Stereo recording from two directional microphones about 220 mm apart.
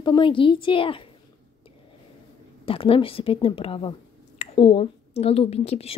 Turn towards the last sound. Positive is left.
turn(degrees=25)  # may be behind; listen again after turning